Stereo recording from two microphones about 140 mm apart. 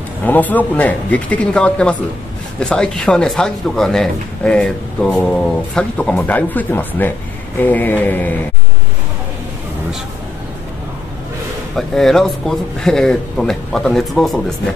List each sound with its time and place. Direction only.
0.2 s speech: 10° left (ahead or behind)
11.7 s speech: 5° left (ahead or behind)